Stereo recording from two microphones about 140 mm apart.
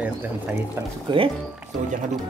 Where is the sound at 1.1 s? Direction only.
35° right (ahead or behind).